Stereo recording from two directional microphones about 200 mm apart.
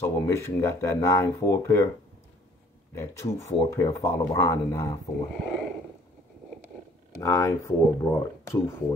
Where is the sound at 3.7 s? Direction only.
15° left (ahead or behind).